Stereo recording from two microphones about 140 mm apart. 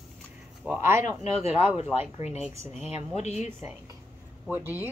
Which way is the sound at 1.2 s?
50° left (ahead or behind).